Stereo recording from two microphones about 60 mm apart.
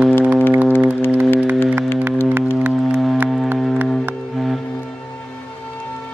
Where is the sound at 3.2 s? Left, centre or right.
Right.